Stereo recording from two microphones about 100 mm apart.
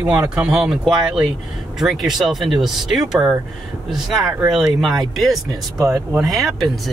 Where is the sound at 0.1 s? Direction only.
15° right (ahead or behind).